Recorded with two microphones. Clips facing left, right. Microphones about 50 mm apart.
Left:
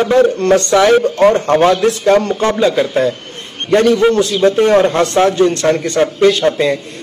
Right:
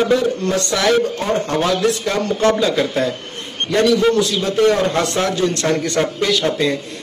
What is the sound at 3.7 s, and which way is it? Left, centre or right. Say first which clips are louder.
A man's voice: left 4 dB; left.